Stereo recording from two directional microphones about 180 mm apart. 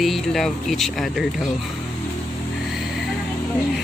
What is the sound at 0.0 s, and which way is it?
Speech, centre (ahead or behind).